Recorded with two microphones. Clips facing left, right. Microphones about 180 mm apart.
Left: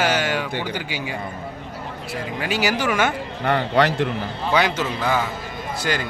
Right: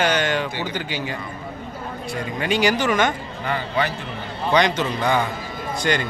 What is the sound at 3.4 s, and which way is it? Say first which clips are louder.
Speech: left 5 dB; 70° left (ahead or behind).